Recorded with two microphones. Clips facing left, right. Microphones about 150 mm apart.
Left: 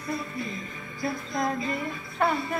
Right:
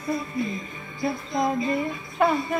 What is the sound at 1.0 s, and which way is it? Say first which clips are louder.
Music: right 4 dB; 25° right (ahead or behind).